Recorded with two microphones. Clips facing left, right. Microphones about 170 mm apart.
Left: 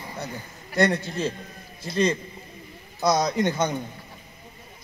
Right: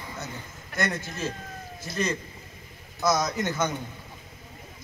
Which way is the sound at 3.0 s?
30° left (ahead or behind).